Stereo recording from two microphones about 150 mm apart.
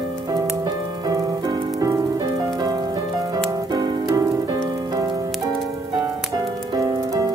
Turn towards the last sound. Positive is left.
turn(degrees=-25)  # may be behind; listen again after turning